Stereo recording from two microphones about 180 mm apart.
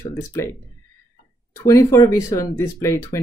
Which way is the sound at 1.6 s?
15° left (ahead or behind).